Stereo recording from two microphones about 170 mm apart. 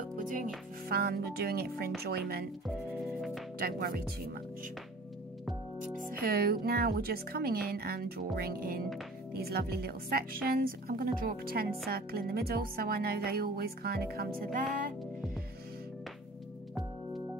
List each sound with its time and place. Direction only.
0.2 s music: 50° right (ahead or behind)
0.8 s music: 65° right (ahead or behind)
2.0 s speech: 65° right (ahead or behind)
3.0 s music: centre (ahead or behind)
3.5 s speech: 60° right (ahead or behind)
5.4 s music: centre (ahead or behind)
6.0 s speech: 65° right (ahead or behind)
14.7 s music: 55° right (ahead or behind)